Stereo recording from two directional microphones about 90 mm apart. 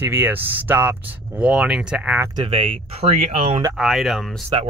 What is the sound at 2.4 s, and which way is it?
Speech, 90° right.